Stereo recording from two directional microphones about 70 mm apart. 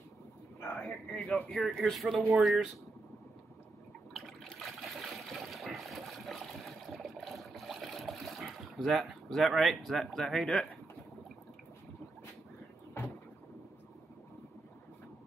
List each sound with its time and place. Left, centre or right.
0.6 s a sound: left
0.8 s speech: centre
1.7 s speech: centre
4.1 s water: centre